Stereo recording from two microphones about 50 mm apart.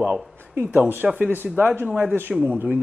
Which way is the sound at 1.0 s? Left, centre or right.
Centre.